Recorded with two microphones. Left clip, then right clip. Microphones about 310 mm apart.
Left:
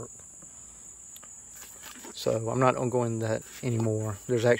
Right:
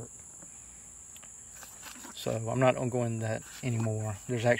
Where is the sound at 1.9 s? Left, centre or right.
Centre.